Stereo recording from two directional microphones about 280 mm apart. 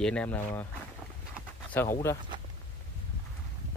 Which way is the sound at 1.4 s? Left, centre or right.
Centre.